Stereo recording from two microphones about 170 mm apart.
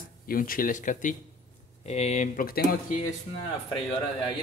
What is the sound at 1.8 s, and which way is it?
Speech, 40° left (ahead or behind).